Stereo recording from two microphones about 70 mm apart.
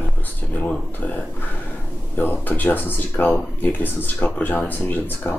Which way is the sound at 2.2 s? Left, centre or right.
Left.